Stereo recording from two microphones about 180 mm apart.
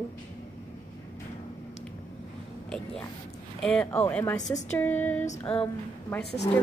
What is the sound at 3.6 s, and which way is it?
Speech, 5° left (ahead or behind).